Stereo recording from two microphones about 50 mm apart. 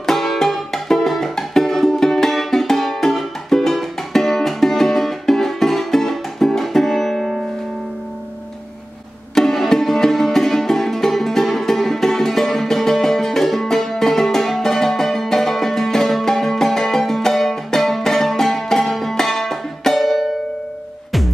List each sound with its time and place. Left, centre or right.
0.0 s music: centre
9.3 s music: centre